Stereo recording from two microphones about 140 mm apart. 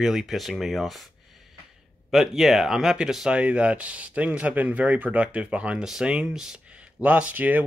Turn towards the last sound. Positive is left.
turn(degrees=-10)  # may be behind; listen again after turning